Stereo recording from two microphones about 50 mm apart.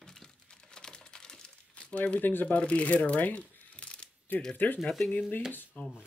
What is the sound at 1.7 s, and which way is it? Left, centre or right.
Crumpling, left.